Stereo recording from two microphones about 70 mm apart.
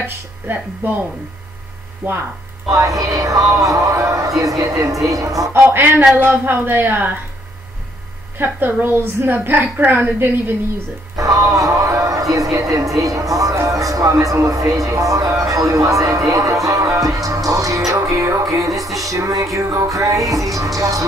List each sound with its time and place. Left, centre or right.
0.0 s speech: right
2.0 s speech: centre
2.7 s speech: right
5.5 s a woman's voice: right
8.4 s a woman's voice: right
11.1 s music: right
11.5 s a woman's voice: right
16.3 s music: right
19.0 s speech: right
20.5 s music: right